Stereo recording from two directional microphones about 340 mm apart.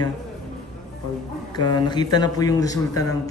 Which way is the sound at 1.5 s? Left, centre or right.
Centre.